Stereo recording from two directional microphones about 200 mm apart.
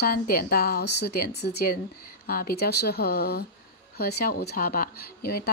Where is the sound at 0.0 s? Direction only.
50° left (ahead or behind).